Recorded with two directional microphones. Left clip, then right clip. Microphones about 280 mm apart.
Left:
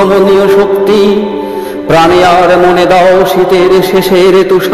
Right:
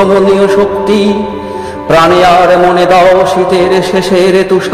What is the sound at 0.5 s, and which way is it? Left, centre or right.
Music, left.